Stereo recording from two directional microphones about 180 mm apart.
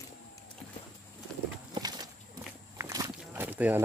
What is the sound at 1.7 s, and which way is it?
Walk, 20° right (ahead or behind).